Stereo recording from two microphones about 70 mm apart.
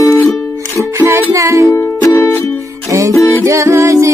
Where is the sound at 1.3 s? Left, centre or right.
Right.